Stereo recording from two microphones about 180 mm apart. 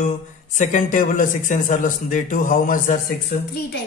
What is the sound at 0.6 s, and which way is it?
A man's voice, 45° left (ahead or behind).